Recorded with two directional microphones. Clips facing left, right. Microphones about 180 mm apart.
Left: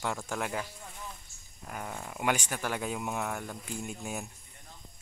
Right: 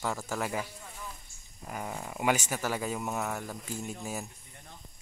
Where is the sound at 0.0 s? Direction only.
5° right (ahead or behind).